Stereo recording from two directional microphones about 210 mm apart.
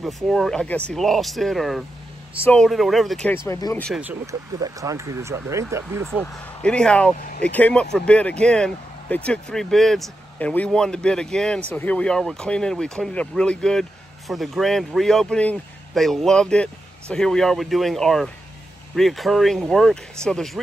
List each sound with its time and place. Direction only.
0.0 s speech: centre (ahead or behind)
3.4 s speech: 15° left (ahead or behind)
3.8 s speech: 5° right (ahead or behind)
6.0 s speech: 5° left (ahead or behind)